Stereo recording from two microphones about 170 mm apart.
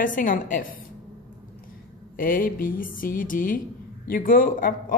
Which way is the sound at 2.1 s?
55° left (ahead or behind).